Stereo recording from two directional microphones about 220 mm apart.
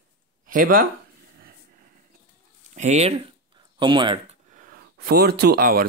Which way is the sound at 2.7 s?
30° right (ahead or behind).